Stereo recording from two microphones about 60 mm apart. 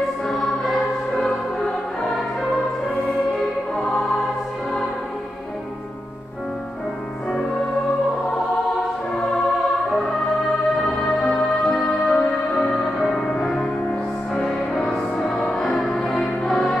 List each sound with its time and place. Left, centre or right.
0.3 s music: centre
11.1 s music: centre